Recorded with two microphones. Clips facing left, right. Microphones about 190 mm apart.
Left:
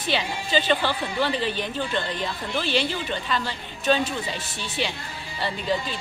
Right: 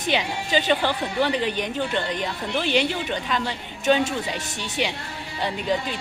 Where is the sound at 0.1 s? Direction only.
15° right (ahead or behind).